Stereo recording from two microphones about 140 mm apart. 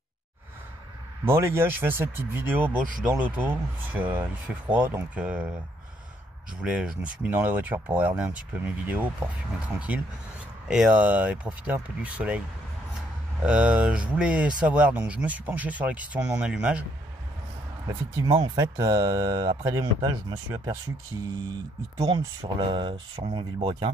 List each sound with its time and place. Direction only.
1.2 s speech: 20° right (ahead or behind)
6.6 s speech: 5° right (ahead or behind)
13.4 s speech: 10° right (ahead or behind)
17.8 s speech: 25° right (ahead or behind)
18.3 s speech: 35° right (ahead or behind)
18.6 s speech: 25° right (ahead or behind)
22.0 s speech: 40° right (ahead or behind)